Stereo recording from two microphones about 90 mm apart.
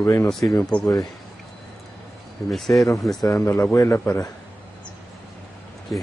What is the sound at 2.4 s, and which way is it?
Speech, centre (ahead or behind).